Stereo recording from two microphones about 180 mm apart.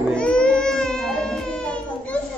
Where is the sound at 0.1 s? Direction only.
5° left (ahead or behind).